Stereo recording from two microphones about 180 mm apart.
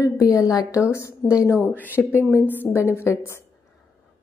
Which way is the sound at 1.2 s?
5° left (ahead or behind).